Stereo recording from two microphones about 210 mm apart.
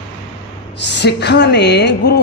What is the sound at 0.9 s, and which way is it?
A man's voice, 55° left (ahead or behind).